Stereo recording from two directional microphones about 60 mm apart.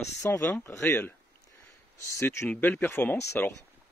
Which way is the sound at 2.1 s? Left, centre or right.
Left.